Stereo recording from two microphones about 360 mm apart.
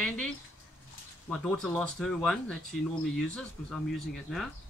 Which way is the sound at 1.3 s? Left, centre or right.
Centre.